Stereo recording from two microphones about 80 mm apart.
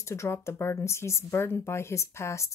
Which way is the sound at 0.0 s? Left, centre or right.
Left.